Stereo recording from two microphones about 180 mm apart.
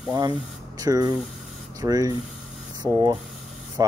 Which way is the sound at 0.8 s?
20° right (ahead or behind).